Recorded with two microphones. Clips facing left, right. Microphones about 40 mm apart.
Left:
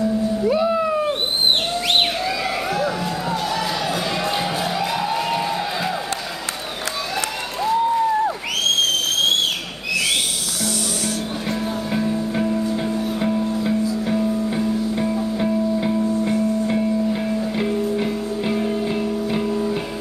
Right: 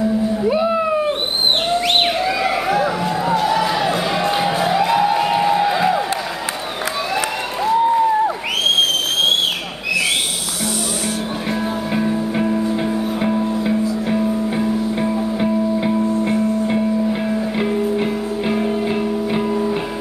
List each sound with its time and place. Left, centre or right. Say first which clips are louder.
0.4 s cat: even; right
2.2 s music: right 5 dB; centre
7.6 s a sound: right 3 dB; centre
11.9 s music: right 2 dB; centre